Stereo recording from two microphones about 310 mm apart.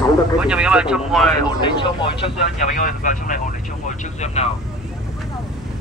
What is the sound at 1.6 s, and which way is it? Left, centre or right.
Speech, centre.